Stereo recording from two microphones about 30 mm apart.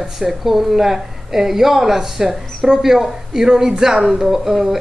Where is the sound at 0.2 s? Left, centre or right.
Centre.